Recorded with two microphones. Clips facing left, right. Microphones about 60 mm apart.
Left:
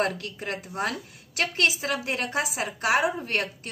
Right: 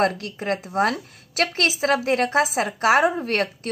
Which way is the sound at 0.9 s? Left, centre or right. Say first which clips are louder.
Right 5 dB; right.